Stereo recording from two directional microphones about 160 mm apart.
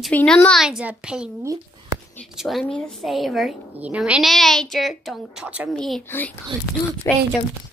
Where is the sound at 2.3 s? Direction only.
Centre (ahead or behind).